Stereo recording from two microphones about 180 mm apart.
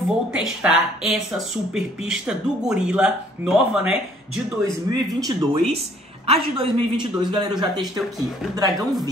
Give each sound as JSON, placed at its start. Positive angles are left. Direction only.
{"t": 0.3, "sound": "speech", "side_deg": -5}
{"t": 4.9, "sound": "a man's voice", "side_deg": -20}
{"t": 5.2, "sound": "a man's voice", "side_deg": -30}